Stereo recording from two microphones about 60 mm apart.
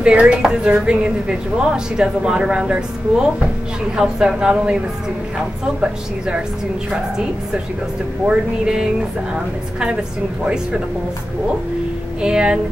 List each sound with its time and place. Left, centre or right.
0.0 s a woman's voice: centre
5.8 s a woman's voice: centre
10.4 s a woman's voice: centre
12.2 s a woman's voice: centre